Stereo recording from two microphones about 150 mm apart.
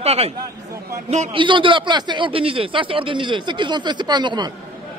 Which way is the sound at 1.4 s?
35° right (ahead or behind).